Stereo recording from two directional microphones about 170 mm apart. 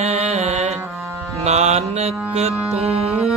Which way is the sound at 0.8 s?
15° right (ahead or behind).